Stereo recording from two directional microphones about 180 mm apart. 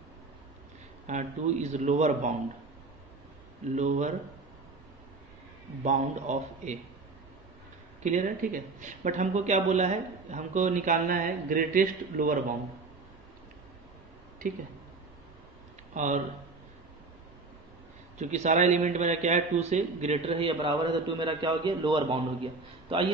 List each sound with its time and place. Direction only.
1.0 s a man's voice: 40° right (ahead or behind)
3.7 s a man's voice: 40° right (ahead or behind)
5.9 s a man's voice: 40° right (ahead or behind)
8.0 s speech: 45° right (ahead or behind)
15.9 s speech: 45° right (ahead or behind)
18.2 s a man's voice: 40° right (ahead or behind)